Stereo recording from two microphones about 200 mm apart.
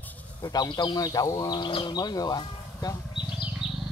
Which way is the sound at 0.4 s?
20° left (ahead or behind).